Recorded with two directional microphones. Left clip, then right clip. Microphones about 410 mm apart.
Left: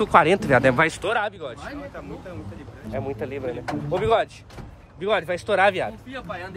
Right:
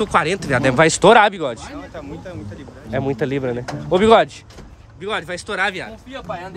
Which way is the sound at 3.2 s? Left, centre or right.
Right.